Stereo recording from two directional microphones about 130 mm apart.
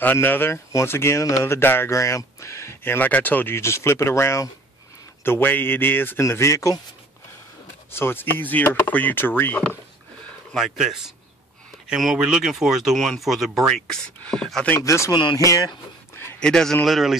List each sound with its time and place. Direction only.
0.0 s speech: 15° left (ahead or behind)
7.9 s speech: 15° left (ahead or behind)
10.5 s speech: centre (ahead or behind)
14.8 s speech: 25° left (ahead or behind)
16.3 s speech: 5° left (ahead or behind)